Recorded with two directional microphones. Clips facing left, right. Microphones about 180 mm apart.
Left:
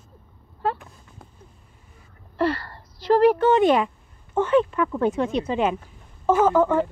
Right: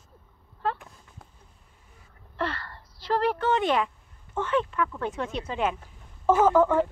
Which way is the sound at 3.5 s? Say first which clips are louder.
Left 7 dB; 10° left (ahead or behind).